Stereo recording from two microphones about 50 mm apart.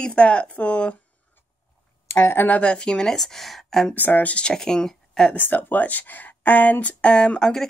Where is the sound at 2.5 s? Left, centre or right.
Left.